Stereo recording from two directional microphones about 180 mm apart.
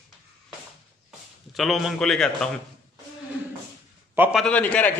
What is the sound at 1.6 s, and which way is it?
Speech, centre (ahead or behind).